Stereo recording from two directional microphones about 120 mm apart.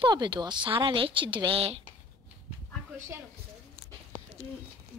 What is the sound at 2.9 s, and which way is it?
Speech, 20° right (ahead or behind).